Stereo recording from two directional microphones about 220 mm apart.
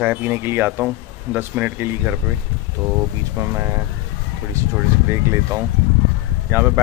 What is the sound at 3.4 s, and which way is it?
Speech, 15° right (ahead or behind).